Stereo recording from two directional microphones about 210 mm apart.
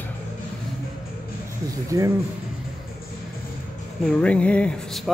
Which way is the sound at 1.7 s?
15° right (ahead or behind).